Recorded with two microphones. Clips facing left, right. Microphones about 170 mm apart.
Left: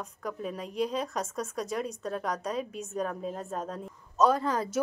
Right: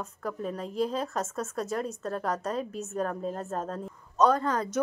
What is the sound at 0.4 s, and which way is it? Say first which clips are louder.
A woman's voice: right 2 dB; 10° left (ahead or behind).